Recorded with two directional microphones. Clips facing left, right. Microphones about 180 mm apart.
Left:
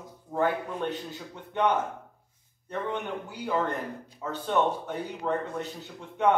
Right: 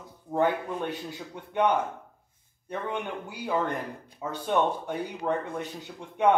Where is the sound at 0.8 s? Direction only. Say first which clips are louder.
Left 1 dB; 10° right (ahead or behind).